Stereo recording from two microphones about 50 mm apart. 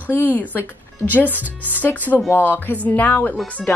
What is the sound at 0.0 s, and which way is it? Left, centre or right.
Speech, left.